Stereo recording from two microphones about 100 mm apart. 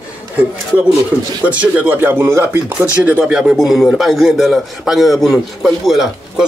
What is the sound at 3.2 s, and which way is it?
A man's voice, 5° right (ahead or behind).